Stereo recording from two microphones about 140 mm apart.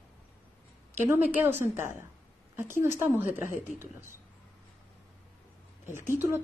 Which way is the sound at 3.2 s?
70° left (ahead or behind).